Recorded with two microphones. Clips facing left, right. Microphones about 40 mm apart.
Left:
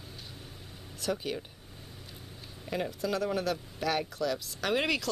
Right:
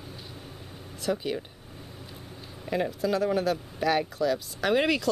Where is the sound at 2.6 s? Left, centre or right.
Centre.